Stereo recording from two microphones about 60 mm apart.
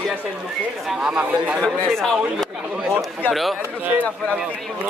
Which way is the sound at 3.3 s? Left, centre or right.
Centre.